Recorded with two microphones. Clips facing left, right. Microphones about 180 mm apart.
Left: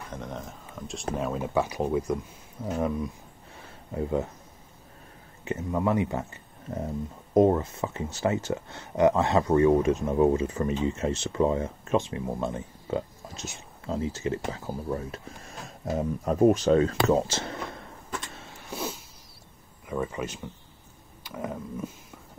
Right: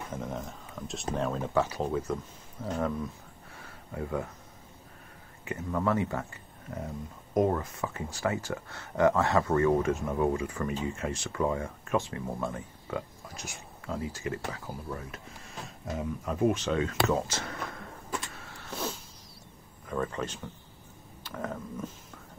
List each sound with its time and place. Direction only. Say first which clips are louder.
0.1 s speech: even; 5° right (ahead or behind); by 2.9 s 15° left (ahead or behind)
3.9 s speech: left 5 dB; 25° left (ahead or behind)
5.4 s speech: left 3 dB; 25° left (ahead or behind)
18.3 s vehicle: left 2 dB; 20° left (ahead or behind)
18.7 s a sound: left 2 dB; 10° left (ahead or behind)
19.9 s speech: left 2 dB; 10° left (ahead or behind)